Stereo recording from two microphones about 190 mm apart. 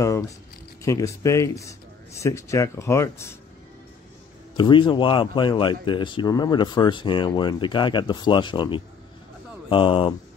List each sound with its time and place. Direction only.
0.8 s speech: 15° left (ahead or behind)
4.6 s speech: 25° left (ahead or behind)